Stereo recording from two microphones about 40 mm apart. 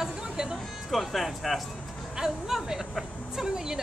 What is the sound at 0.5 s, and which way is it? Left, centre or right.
Speech, centre.